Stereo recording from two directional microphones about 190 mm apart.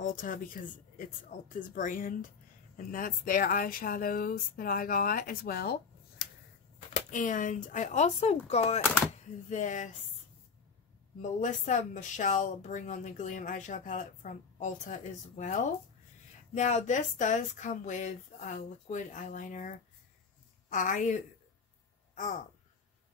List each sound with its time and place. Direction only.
0.0 s speech: 45° left (ahead or behind)
6.9 s speech: 45° left (ahead or behind)
11.1 s speech: 40° left (ahead or behind)